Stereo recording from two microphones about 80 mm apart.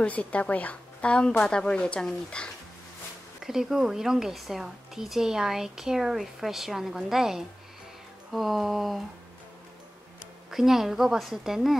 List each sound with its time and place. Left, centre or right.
0.0 s a woman's voice: centre
3.4 s a woman's voice: centre
10.5 s a woman's voice: centre